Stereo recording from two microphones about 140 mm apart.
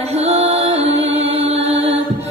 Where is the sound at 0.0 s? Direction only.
50° right (ahead or behind).